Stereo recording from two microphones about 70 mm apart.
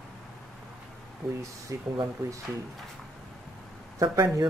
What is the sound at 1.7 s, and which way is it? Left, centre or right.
Speech, right.